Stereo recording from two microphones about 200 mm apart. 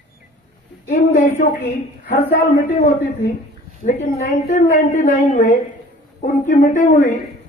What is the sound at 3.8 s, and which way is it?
A woman's voice, 35° left (ahead or behind).